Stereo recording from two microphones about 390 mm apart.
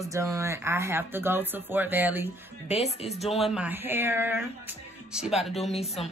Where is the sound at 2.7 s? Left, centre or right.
Centre.